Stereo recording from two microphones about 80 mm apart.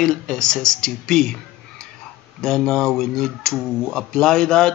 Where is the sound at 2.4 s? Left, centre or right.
Centre.